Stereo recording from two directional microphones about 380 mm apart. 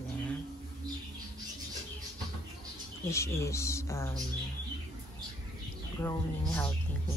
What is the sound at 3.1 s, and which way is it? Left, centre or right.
Speech, centre.